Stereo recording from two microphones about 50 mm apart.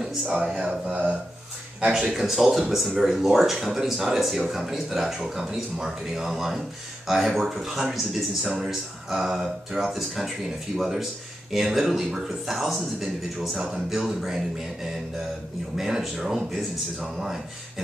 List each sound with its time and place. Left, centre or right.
0.4 s speech: centre
1.9 s speech: centre